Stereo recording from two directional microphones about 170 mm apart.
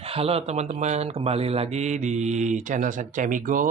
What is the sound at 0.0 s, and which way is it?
Speech, 35° right (ahead or behind).